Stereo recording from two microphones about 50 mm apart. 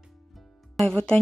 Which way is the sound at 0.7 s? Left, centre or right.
Centre.